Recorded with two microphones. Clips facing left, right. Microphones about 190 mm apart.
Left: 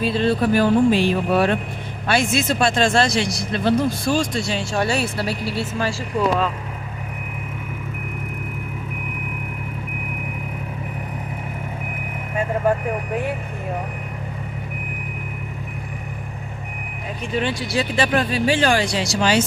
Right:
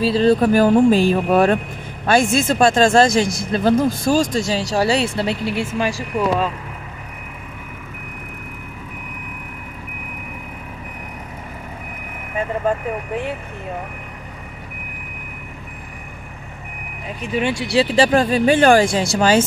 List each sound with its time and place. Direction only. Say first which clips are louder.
0.0 s speech: right 4 dB; 35° right (ahead or behind); by 6.5 s 15° right (ahead or behind)
17.7 s speech: right 6 dB; 30° right (ahead or behind)
18.3 s speech: right 6 dB; 50° right (ahead or behind)